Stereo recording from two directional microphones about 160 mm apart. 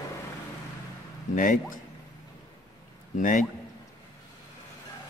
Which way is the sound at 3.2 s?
55° left (ahead or behind).